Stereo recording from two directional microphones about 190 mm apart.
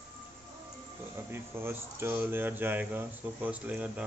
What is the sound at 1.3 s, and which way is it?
Speech, 10° right (ahead or behind).